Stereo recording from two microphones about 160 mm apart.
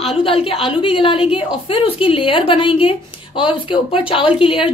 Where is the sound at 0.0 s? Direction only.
35° left (ahead or behind).